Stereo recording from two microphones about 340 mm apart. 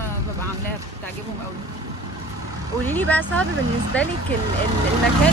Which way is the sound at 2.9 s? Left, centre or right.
Centre.